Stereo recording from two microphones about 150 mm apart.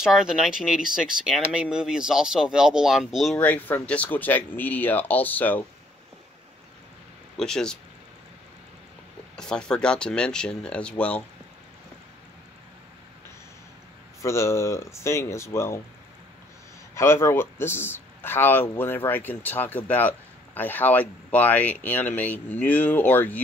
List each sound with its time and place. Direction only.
0.0 s speech: 5° right (ahead or behind); by 5.7 s 10° left (ahead or behind)
7.3 s speech: 5° left (ahead or behind)
9.4 s speech: 5° left (ahead or behind)
14.2 s speech: 20° left (ahead or behind)
16.9 s speech: 15° left (ahead or behind)